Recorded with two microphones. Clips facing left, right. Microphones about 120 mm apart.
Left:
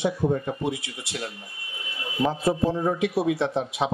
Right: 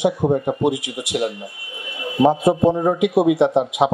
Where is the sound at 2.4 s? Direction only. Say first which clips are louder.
Right 7 dB; 20° right (ahead or behind).